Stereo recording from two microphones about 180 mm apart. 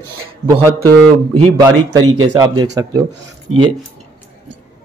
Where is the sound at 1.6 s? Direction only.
20° right (ahead or behind).